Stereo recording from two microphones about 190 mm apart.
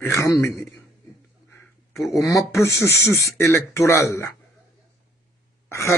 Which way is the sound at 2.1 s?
15° left (ahead or behind).